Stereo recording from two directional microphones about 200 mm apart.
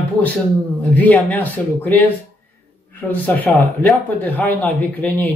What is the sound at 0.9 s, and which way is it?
Speech, 10° left (ahead or behind).